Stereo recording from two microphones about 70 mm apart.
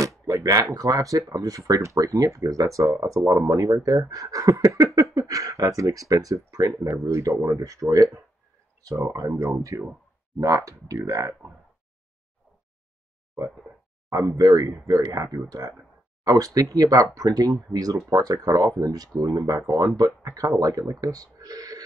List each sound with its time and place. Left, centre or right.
0.3 s a sound: right
0.7 s speech: right
6.8 s speech: right
9.3 s speech: right
10.4 s speech: right
14.1 s speech: right